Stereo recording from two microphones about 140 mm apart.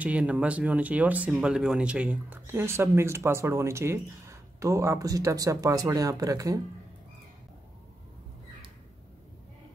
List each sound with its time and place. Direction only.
0.0 s speech: 10° right (ahead or behind); by 6.6 s 25° right (ahead or behind)